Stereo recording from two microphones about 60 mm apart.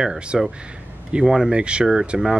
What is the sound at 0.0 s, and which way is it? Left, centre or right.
Speech, centre.